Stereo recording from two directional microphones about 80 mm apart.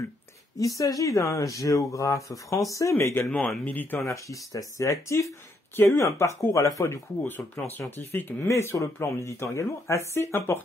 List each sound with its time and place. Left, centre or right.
0.6 s speech: left
3.3 s speech: centre
4.0 s speech: left
8.5 s speech: left